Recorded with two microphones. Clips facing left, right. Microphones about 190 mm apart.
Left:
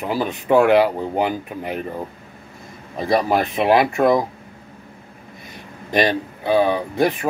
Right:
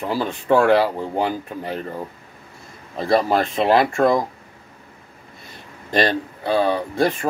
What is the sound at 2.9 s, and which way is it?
Speech, 15° left (ahead or behind).